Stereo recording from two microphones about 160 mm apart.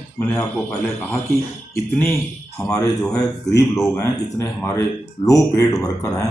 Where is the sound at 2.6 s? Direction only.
20° left (ahead or behind).